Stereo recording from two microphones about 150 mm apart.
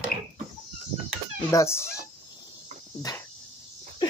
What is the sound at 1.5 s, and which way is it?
Speech, 20° left (ahead or behind).